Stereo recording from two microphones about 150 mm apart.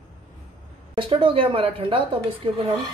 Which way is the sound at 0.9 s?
35° right (ahead or behind).